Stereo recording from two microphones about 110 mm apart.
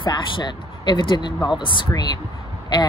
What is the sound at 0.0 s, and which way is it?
Speech, 45° left (ahead or behind).